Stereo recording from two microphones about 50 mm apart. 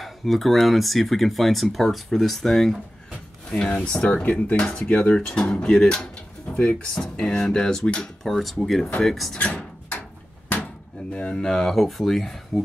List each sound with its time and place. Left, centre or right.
0.0 s speech: centre
3.1 s a sound: centre
4.6 s speech: centre
6.5 s music: left
7.2 s speech: centre
9.4 s speech: left
11.1 s speech: centre